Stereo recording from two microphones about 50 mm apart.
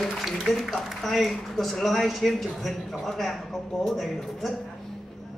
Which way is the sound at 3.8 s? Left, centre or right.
Centre.